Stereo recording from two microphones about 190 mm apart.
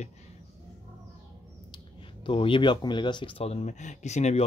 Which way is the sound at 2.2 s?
25° left (ahead or behind).